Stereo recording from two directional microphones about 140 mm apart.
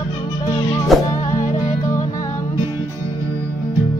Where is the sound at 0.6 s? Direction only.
30° left (ahead or behind).